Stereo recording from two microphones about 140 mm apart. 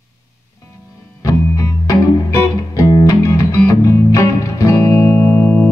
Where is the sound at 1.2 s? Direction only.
25° left (ahead or behind).